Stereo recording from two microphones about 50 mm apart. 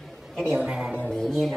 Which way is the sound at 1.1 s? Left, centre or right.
Centre.